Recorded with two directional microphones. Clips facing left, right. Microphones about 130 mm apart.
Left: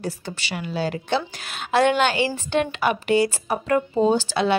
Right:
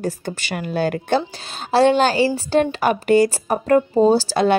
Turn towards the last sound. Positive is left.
turn(degrees=-40)  # may be behind; listen again after turning